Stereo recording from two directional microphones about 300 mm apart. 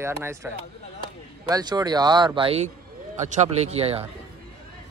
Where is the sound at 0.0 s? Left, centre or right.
Centre.